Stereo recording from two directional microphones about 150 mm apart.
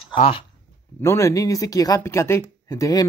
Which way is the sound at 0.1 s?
35° left (ahead or behind).